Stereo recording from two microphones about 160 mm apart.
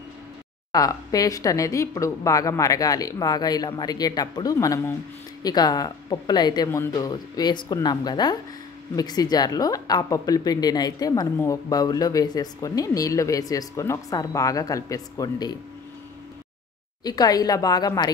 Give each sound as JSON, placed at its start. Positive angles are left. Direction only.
{"t": 0.7, "sound": "a woman's voice", "side_deg": 25}
{"t": 17.0, "sound": "a woman's voice", "side_deg": 25}